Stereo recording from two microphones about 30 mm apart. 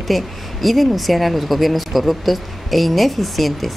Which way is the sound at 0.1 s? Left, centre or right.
Centre.